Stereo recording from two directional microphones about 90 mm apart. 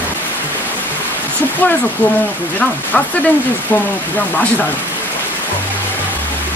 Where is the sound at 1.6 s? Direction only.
20° left (ahead or behind).